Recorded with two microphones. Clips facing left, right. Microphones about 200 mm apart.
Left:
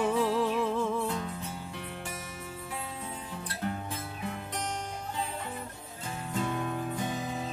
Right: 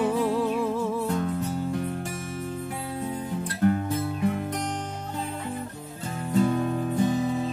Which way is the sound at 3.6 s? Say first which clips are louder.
Right 12 dB; 55° right (ahead or behind).